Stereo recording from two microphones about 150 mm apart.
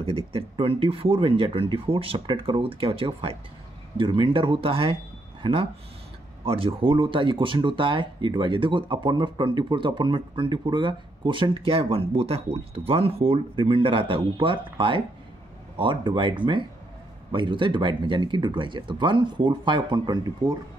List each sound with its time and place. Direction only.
0.0 s speech: 40° right (ahead or behind)